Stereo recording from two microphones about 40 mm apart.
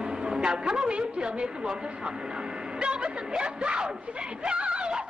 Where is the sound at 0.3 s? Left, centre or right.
Centre.